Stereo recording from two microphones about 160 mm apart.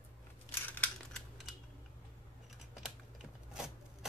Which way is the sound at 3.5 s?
5° right (ahead or behind).